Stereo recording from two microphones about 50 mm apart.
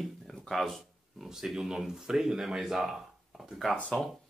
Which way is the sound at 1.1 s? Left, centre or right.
Centre.